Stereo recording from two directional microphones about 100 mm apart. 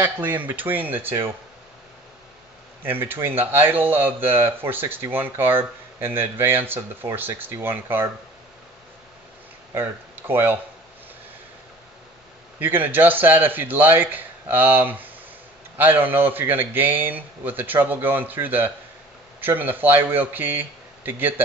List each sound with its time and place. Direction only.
0.0 s speech: 20° right (ahead or behind)
2.8 s speech: 20° right (ahead or behind)
9.8 s speech: 20° right (ahead or behind)
12.5 s speech: 20° right (ahead or behind)